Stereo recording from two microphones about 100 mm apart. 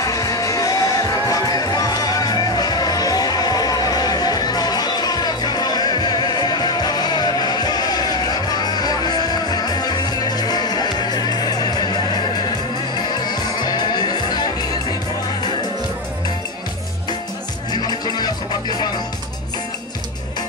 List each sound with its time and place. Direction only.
0.0 s music: 35° left (ahead or behind)
17.7 s music: 45° left (ahead or behind)